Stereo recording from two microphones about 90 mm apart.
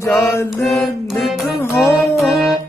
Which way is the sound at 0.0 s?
30° left (ahead or behind).